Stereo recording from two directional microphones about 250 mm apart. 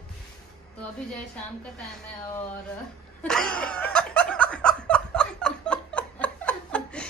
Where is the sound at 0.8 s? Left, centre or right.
Centre.